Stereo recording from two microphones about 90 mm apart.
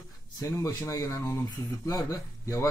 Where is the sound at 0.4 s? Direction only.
35° left (ahead or behind).